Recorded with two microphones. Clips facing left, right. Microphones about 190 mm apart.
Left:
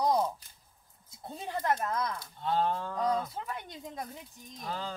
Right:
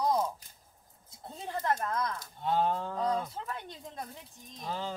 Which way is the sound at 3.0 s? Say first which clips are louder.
Left 2 dB; 5° left (ahead or behind).